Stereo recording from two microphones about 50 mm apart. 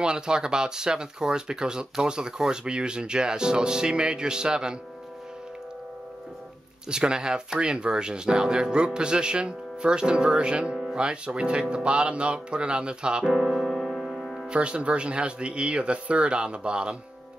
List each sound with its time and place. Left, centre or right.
0.0 s speech: centre
6.9 s speech: centre
13.3 s keyboard: centre
14.1 s music: centre
14.5 s speech: right